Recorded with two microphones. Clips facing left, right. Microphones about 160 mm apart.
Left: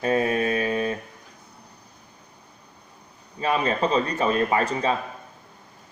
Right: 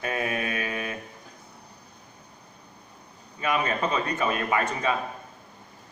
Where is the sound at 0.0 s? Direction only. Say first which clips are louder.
Left 7 dB; 30° left (ahead or behind).